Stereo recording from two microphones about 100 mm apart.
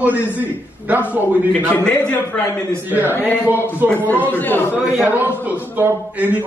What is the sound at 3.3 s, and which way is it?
A man's voice, 20° left (ahead or behind).